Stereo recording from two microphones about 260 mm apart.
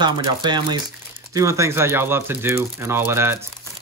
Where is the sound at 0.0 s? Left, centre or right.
Centre.